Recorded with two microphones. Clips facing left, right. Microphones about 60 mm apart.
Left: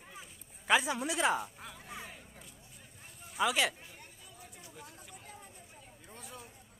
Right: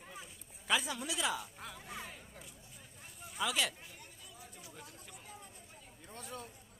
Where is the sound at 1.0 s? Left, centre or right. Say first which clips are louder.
Left 6 dB; left.